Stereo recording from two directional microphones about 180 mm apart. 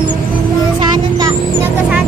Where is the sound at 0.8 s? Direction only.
20° right (ahead or behind).